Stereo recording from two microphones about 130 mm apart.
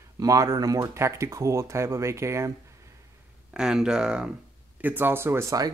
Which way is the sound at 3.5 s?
5° right (ahead or behind).